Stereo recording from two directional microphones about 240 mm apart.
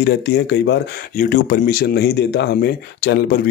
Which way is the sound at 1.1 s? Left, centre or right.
Left.